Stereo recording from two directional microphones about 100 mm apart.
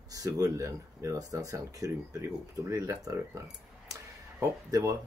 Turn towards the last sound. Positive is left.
turn(degrees=-35)  # may be behind; listen again after turning